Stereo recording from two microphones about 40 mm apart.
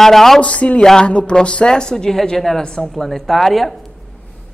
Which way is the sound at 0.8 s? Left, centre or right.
Centre.